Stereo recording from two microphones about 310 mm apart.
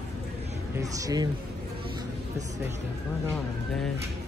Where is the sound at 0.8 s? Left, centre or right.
Centre.